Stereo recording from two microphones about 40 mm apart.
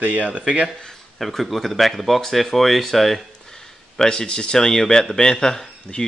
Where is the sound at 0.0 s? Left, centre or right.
Right.